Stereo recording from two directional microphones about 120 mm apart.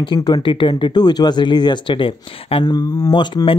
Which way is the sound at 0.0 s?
40° left (ahead or behind).